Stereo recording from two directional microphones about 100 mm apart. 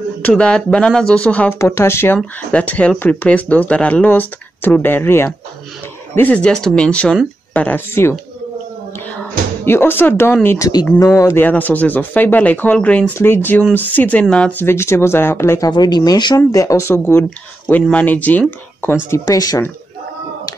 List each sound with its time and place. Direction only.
0.3 s speech: 10° left (ahead or behind)
1.6 s speech: 25° left (ahead or behind)
2.1 s speech: 15° left (ahead or behind)
9.7 s speech: 20° left (ahead or behind)
11.4 s speech: 15° left (ahead or behind)
14.6 s speech: 25° left (ahead or behind)
15.7 s speech: 45° left (ahead or behind)
16.3 s speech: 30° left (ahead or behind); by 18.4 s 15° left (ahead or behind)
19.0 s speech: 30° left (ahead or behind)